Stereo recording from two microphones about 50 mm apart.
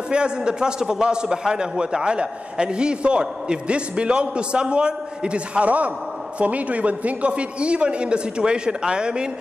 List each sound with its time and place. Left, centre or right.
0.1 s a man's voice: centre